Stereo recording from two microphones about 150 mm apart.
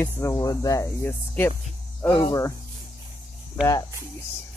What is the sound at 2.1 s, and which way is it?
Speech, 25° left (ahead or behind).